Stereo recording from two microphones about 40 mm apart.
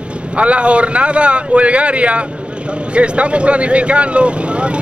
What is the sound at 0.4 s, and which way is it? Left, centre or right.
Speech, right.